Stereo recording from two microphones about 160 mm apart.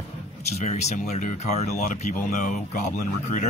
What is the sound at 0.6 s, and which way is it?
Speech, 45° left (ahead or behind).